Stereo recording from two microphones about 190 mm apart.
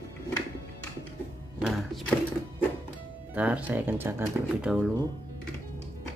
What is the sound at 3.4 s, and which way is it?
Speech, 5° right (ahead or behind).